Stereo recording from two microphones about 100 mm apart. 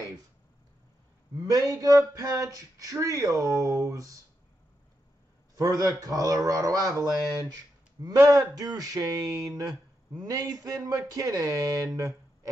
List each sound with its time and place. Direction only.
1.5 s speech: 35° right (ahead or behind)
5.6 s speech: 35° right (ahead or behind)